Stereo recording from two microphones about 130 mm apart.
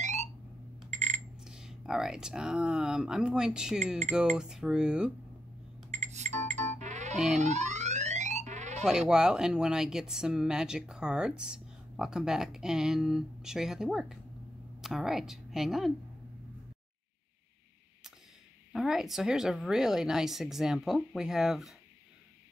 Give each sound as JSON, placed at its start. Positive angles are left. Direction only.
{"t": 0.0, "sound": "a sound", "side_deg": -60}
{"t": 0.8, "sound": "alarm", "side_deg": -60}
{"t": 1.4, "sound": "speech", "side_deg": -5}
{"t": 5.9, "sound": "cash register", "side_deg": -60}
{"t": 7.3, "sound": "alarm", "side_deg": -60}
{"t": 8.8, "sound": "a woman's voice", "side_deg": -5}
{"t": 18.7, "sound": "speech", "side_deg": 0}